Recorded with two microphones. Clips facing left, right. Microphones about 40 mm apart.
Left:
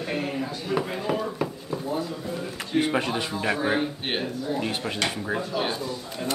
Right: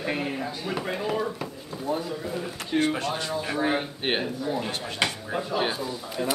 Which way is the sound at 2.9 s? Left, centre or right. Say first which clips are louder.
Left 2 dB; left.